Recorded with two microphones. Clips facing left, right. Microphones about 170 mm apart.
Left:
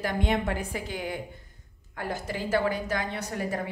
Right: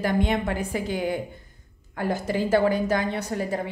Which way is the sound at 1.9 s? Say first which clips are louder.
Right 7 dB; 30° right (ahead or behind).